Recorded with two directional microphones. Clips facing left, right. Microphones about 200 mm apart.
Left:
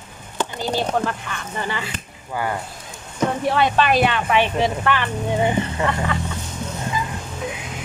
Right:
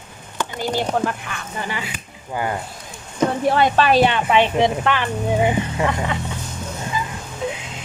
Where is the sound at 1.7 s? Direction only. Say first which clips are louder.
Left 1 dB; 15° right (ahead or behind).